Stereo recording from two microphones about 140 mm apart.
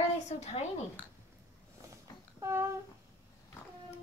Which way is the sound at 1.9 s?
20° right (ahead or behind).